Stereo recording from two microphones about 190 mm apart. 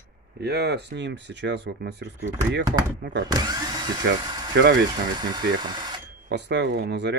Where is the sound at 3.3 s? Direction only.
20° right (ahead or behind).